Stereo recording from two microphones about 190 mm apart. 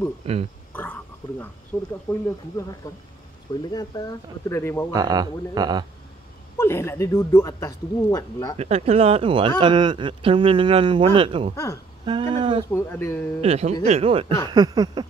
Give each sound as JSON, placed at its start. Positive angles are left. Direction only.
{"t": 0.2, "sound": "speech", "side_deg": -30}
{"t": 1.7, "sound": "speech", "side_deg": 15}
{"t": 4.9, "sound": "speech", "side_deg": -20}
{"t": 6.6, "sound": "speech", "side_deg": 15}
{"t": 8.5, "sound": "speech", "side_deg": -35}
{"t": 11.5, "sound": "speech", "side_deg": 15}
{"t": 12.1, "sound": "speech", "side_deg": -25}
{"t": 12.7, "sound": "speech", "side_deg": 15}
{"t": 13.4, "sound": "speech", "side_deg": -35}
{"t": 14.5, "sound": "speech", "side_deg": -20}